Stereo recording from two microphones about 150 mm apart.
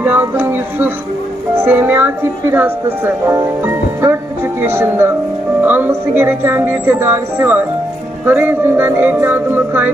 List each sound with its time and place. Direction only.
0.0 s speech: 15° right (ahead or behind)